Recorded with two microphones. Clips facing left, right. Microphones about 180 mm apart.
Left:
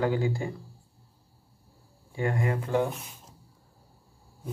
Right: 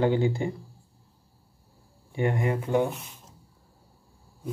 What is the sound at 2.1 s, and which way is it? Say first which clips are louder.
Speech: right 2 dB; 20° right (ahead or behind).